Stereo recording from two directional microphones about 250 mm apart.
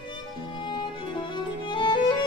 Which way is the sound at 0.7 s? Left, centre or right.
Centre.